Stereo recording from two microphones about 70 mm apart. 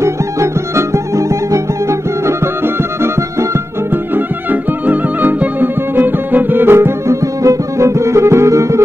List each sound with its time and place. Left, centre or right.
0.0 s music: right
3.9 s music: right
7.2 s music: right